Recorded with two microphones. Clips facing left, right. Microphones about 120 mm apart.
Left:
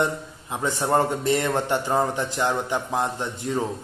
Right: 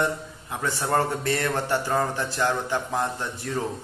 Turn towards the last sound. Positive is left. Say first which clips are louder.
# left 3 dB
turn(degrees=20)  # may be behind; listen again after turning